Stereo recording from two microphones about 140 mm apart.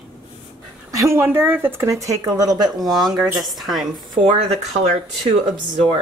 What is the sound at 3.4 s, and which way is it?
Speech, centre (ahead or behind).